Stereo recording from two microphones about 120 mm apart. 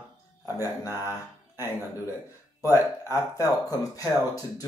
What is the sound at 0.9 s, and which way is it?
Speech, 20° right (ahead or behind).